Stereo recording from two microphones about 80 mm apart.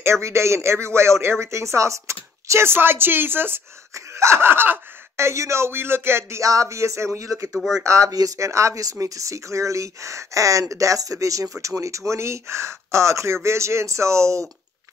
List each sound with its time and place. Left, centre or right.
0.0 s speech: right
6.4 s speech: right
7.5 s speech: centre
7.8 s speech: right